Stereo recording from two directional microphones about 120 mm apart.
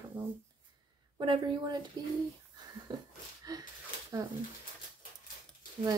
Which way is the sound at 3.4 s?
30° right (ahead or behind).